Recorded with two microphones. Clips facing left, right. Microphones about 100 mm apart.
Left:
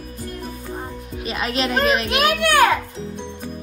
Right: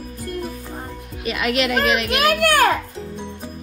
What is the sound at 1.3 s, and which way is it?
Speech, 35° left (ahead or behind).